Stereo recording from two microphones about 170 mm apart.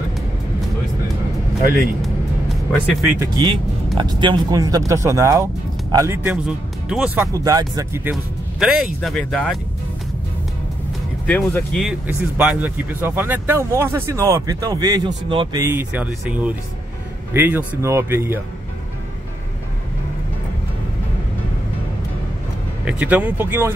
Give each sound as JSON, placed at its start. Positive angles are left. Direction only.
{"t": 3.2, "sound": "speech", "side_deg": -25}
{"t": 6.4, "sound": "speech", "side_deg": -5}
{"t": 7.4, "sound": "speech", "side_deg": -20}
{"t": 11.2, "sound": "speech", "side_deg": 10}
{"t": 12.4, "sound": "speech", "side_deg": -10}
{"t": 15.6, "sound": "speech", "side_deg": -10}
{"t": 22.8, "sound": "speech", "side_deg": -10}